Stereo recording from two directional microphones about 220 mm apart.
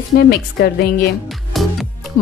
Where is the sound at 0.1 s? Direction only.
50° left (ahead or behind).